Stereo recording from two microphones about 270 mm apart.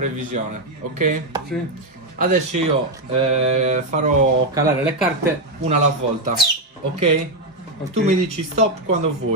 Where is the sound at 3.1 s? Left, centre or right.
Right.